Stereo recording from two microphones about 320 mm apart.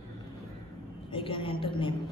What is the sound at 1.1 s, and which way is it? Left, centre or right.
Speech, centre.